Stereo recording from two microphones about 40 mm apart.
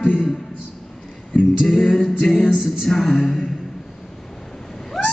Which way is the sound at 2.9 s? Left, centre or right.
Centre.